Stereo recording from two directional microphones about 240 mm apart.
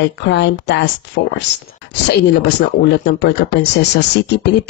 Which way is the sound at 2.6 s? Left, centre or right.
Left.